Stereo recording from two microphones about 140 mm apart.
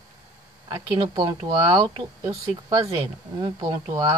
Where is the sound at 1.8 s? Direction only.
45° right (ahead or behind).